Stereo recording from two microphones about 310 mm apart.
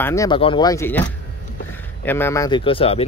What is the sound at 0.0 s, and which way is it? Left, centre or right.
Speech, centre.